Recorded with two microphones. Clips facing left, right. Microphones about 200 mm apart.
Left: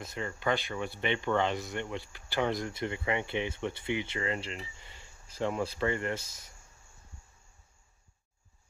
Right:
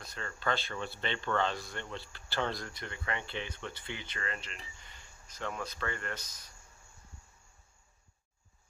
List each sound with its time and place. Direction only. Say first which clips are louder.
0.0 s speech: left 4 dB; 20° left (ahead or behind)